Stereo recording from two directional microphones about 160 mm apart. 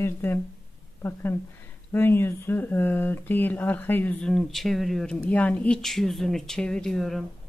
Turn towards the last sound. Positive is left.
turn(degrees=0)  # may be behind; listen again after turning